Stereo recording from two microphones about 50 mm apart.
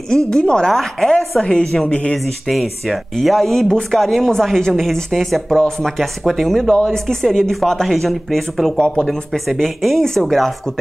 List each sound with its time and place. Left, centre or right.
0.3 s speech: centre
0.7 s speech: centre
1.4 s speech: centre
2.4 s speech: centre
3.6 s speech: centre
6.7 s speech: centre
8.7 s speech: centre
9.0 s speech: centre